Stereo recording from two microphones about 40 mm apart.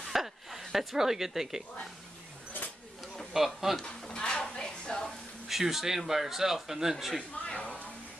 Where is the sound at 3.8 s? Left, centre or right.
Left.